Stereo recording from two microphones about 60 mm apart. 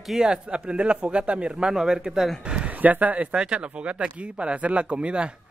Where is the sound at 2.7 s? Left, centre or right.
Right.